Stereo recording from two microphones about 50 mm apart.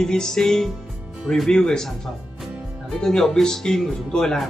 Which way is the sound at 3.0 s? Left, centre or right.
Centre.